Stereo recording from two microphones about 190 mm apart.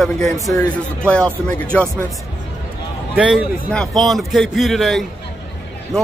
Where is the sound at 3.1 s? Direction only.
5° right (ahead or behind).